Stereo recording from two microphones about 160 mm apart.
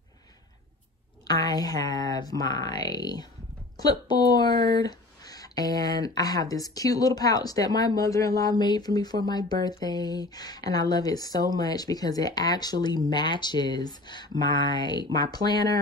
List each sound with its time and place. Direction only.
1.2 s speech: 25° left (ahead or behind)